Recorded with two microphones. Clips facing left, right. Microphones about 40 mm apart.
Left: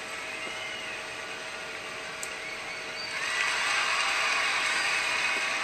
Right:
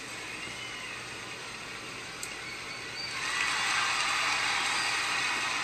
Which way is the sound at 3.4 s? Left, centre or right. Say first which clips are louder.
Left 1 dB; left.